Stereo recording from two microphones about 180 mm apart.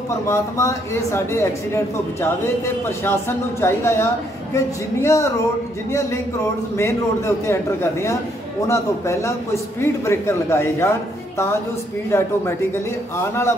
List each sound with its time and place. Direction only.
0.3 s a man's voice: 15° left (ahead or behind)
6.8 s a man's voice: 15° left (ahead or behind)
13.2 s a man's voice: 15° left (ahead or behind)